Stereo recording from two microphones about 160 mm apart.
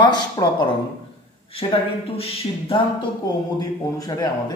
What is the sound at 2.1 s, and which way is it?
Speech, 35° left (ahead or behind).